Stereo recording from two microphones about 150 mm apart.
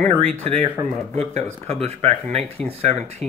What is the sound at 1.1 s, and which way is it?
Speech, 45° right (ahead or behind).